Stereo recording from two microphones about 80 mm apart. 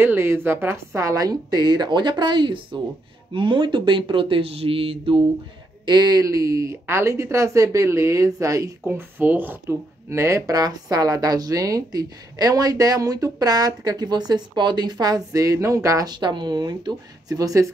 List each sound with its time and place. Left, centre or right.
0.0 s a woman's voice: right
5.9 s a woman's voice: right
6.2 s speech: right
8.8 s speech: right
10.0 s speech: right
10.5 s a woman's voice: right
16.1 s a woman's voice: right